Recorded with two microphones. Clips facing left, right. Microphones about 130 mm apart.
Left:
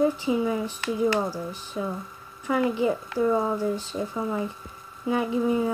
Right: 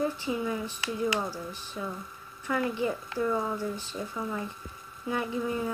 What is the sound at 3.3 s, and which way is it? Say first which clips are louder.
Speech: left 7 dB; 20° left (ahead or behind).